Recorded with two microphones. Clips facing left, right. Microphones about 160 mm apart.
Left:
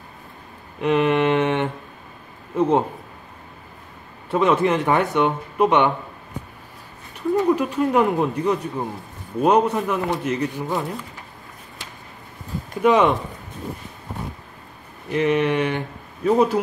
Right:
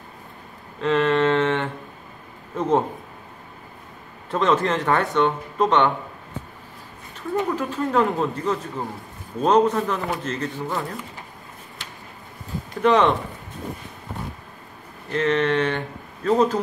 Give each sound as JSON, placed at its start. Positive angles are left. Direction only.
{"t": 0.7, "sound": "a sound", "side_deg": 15}
{"t": 4.3, "sound": "speech", "side_deg": 10}
{"t": 7.4, "sound": "speech", "side_deg": 15}
{"t": 12.8, "sound": "speech", "side_deg": 10}
{"t": 15.0, "sound": "speech", "side_deg": 10}